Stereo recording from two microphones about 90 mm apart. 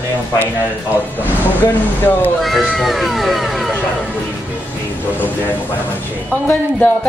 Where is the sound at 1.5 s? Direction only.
25° left (ahead or behind).